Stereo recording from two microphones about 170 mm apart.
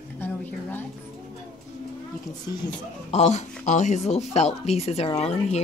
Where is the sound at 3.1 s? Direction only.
40° left (ahead or behind).